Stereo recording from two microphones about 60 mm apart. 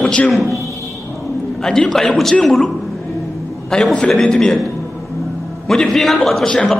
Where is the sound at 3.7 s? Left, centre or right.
Centre.